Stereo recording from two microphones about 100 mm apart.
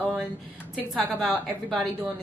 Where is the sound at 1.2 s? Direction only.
Centre (ahead or behind).